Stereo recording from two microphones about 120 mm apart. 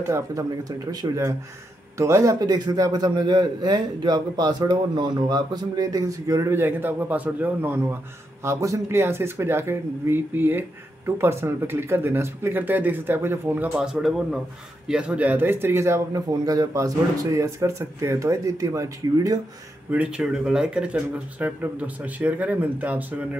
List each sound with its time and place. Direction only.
0.0 s a man's voice: 25° right (ahead or behind)
19.9 s speech: 10° right (ahead or behind)